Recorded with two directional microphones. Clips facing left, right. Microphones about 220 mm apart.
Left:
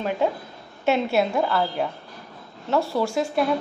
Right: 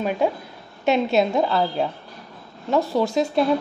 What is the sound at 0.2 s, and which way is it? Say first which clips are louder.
A woman's voice: right 1 dB; 15° right (ahead or behind).